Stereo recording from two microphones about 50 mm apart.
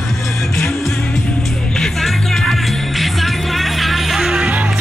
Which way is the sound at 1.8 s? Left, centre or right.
Centre.